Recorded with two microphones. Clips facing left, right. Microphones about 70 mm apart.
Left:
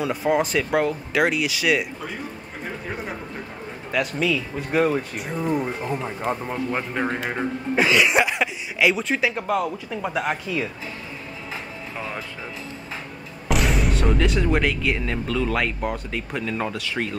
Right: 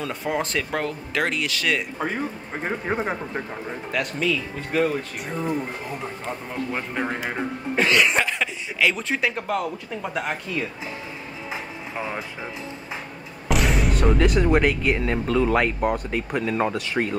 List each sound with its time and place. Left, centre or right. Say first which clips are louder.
0.0 s speech: left 5 dB; centre
2.6 s speech: right 6 dB; right
3.9 s speech: left 2 dB; centre
5.3 s speech: left 3 dB; centre
13.5 s speech: even; centre